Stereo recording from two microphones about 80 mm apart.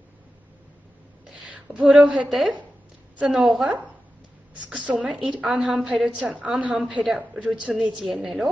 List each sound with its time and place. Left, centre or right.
1.4 s a sound: centre
1.9 s a woman's voice: centre
8.0 s a woman's voice: centre